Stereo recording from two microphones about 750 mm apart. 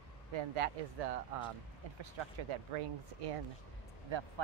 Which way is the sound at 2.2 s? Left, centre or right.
Right.